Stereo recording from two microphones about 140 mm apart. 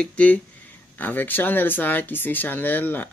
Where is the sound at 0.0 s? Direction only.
10° left (ahead or behind).